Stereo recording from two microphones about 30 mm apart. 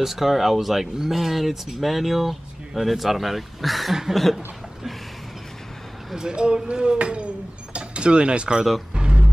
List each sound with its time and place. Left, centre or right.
0.0 s speech: centre
6.1 s cutlery: right
7.0 s speech: right
8.9 s music: right